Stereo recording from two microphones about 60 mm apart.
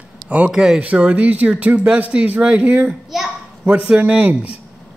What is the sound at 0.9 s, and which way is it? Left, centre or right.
A man's voice, right.